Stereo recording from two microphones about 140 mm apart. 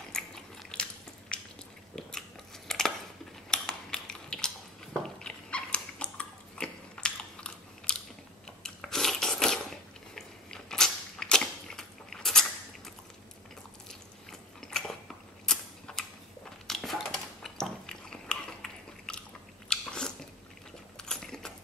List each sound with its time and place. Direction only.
0.1 s biting: 5° left (ahead or behind)
1.3 s a sound: 5° left (ahead or behind)
2.0 s biting: 5° left (ahead or behind)
2.7 s a sound: 5° left (ahead or behind)
5.0 s dog: 5° left (ahead or behind)
8.6 s a sound: 5° left (ahead or behind)
14.6 s biting: 5° left (ahead or behind)
15.4 s mechanisms: 5° left (ahead or behind)
16.6 s biting: 5° left (ahead or behind)